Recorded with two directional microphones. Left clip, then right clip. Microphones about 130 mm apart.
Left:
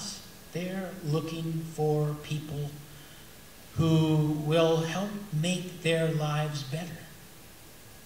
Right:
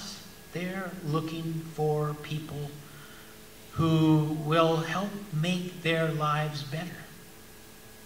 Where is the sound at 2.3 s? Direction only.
30° left (ahead or behind).